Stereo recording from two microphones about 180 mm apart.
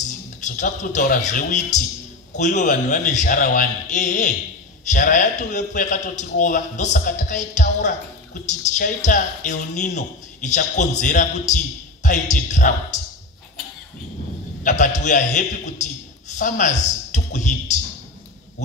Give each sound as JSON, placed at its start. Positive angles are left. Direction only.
{"t": 0.4, "sound": "a man's voice", "side_deg": 45}
{"t": 14.6, "sound": "a man's voice", "side_deg": 45}